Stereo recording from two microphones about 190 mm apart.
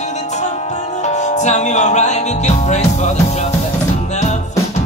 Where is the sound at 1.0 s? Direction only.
40° left (ahead or behind).